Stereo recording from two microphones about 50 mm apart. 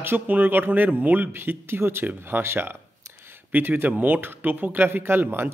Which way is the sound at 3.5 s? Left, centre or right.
Right.